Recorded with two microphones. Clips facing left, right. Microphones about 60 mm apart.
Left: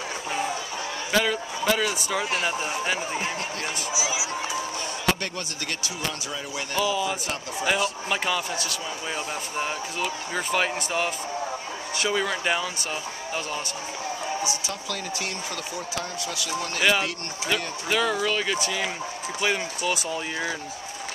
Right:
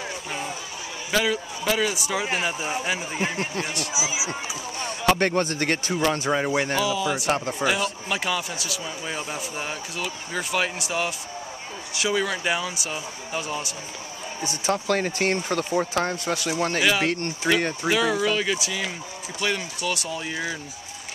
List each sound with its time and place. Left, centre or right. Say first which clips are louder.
1.1 s speech: right 1 dB; centre
3.9 s speech: even; right
5.0 s speech: right 8 dB; right
6.8 s speech: right 1 dB; centre
7.2 s speech: right 8 dB; right
7.6 s speech: left 3 dB; centre
14.4 s speech: right 4 dB; right
17.8 s speech: even; centre